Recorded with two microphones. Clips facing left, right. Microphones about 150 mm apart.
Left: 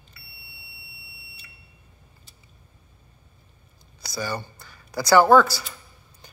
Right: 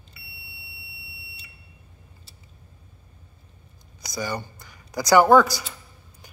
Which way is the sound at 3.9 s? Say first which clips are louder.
Even; 20° right (ahead or behind).